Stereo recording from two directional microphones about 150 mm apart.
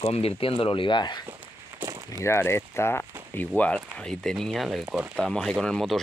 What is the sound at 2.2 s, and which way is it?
Speech, 15° left (ahead or behind).